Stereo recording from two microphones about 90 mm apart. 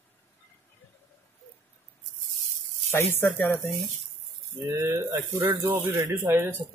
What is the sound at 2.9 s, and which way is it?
Speech, 25° left (ahead or behind).